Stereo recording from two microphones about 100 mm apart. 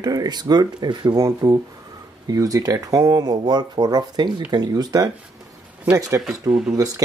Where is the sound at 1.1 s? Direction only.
30° right (ahead or behind).